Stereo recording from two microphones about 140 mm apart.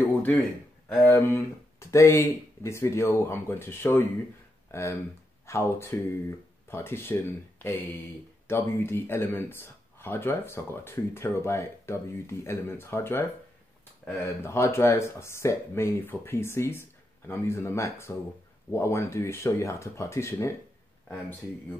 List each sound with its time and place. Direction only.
0.0 s a sound: 10° left (ahead or behind)
0.8 s speech: 15° left (ahead or behind)
14.4 s speech: 20° left (ahead or behind)